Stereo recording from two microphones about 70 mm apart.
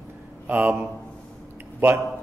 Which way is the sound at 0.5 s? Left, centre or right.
Right.